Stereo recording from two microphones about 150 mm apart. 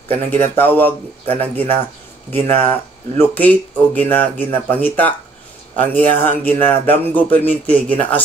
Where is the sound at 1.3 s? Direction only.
45° right (ahead or behind).